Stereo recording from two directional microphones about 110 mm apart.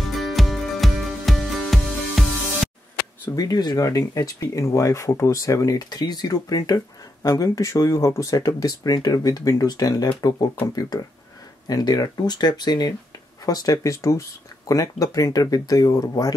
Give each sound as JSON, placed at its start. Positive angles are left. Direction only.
{"t": 0.0, "sound": "music", "side_deg": 0}
{"t": 3.3, "sound": "speech", "side_deg": 35}